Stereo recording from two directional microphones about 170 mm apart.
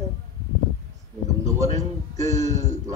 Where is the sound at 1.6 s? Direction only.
40° right (ahead or behind).